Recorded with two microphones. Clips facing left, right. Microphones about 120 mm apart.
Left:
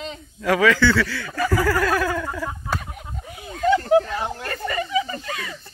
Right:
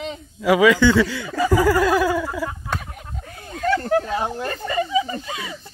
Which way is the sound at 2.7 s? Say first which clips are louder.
Even; centre (ahead or behind).